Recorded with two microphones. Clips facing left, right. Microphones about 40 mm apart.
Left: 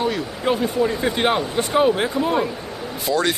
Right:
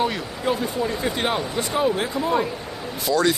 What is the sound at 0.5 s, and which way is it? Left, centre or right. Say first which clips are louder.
Speech: left 4 dB; left.